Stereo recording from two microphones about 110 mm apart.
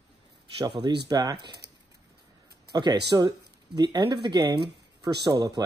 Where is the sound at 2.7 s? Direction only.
40° right (ahead or behind).